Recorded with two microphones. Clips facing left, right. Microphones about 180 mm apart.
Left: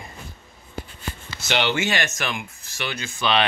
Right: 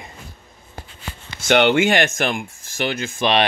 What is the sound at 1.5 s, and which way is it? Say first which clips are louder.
Speech: right 8 dB; 55° right (ahead or behind).